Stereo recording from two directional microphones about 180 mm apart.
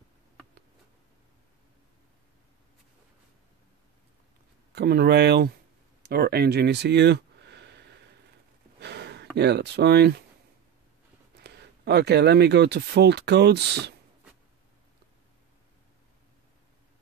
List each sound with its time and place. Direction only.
4.7 s speech: 65° right (ahead or behind)
6.0 s a sound: 60° right (ahead or behind)
8.7 s speech: 65° right (ahead or behind)
11.3 s speech: 65° right (ahead or behind)